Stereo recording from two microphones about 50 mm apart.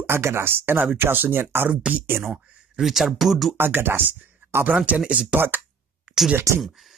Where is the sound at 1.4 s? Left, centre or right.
Right.